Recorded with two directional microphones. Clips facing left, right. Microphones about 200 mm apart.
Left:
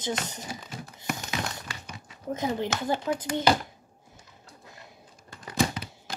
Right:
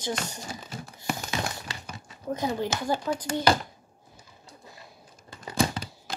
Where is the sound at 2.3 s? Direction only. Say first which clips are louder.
Even; 20° left (ahead or behind).